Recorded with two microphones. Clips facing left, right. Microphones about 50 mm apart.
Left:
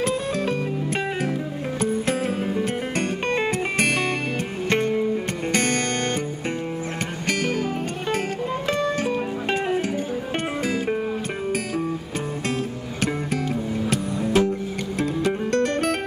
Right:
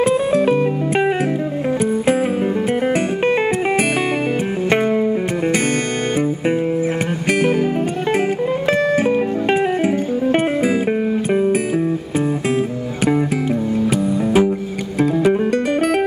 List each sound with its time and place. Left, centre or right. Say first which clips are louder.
4.6 s music: right 5 dB; centre
9.0 s music: right 8 dB; centre
13.8 s music: right 7 dB; centre